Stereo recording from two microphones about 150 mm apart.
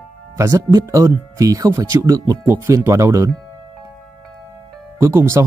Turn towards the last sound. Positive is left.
turn(degrees=-20)  # may be behind; listen again after turning